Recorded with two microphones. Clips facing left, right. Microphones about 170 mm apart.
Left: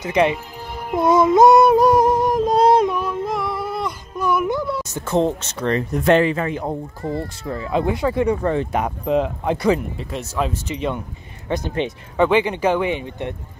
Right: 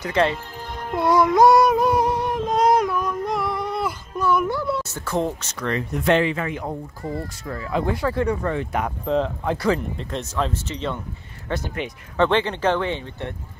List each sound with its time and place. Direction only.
0.0 s music: 15° left (ahead or behind)
0.9 s speech: 20° left (ahead or behind)
1.8 s music: 45° left (ahead or behind)
3.0 s a sound: 5° left (ahead or behind)
4.2 s music: 15° left (ahead or behind)
4.8 s speech: 20° left (ahead or behind)